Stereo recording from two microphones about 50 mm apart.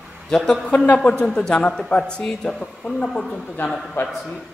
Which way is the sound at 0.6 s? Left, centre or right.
Left.